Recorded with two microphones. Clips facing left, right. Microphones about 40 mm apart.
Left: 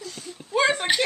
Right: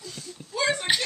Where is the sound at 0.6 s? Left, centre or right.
Left.